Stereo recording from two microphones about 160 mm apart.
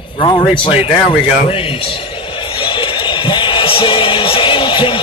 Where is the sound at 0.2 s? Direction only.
30° left (ahead or behind).